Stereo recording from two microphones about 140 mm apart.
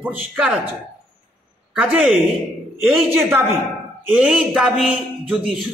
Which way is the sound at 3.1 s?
15° right (ahead or behind).